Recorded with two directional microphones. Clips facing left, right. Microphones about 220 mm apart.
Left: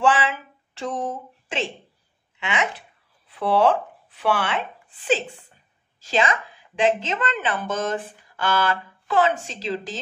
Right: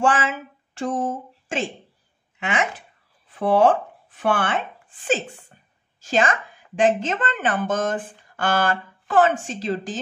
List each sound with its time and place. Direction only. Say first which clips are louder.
0.0 s a woman's voice: even; 45° right (ahead or behind)